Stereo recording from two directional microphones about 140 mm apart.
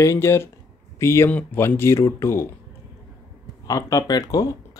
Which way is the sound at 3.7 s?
25° left (ahead or behind).